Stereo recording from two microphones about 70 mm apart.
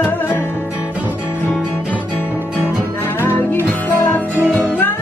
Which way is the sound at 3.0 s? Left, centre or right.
Left.